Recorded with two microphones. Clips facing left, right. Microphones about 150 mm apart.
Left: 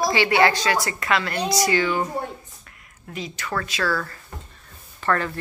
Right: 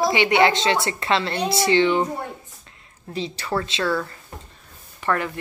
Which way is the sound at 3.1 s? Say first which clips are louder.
Right 3 dB; 30° right (ahead or behind).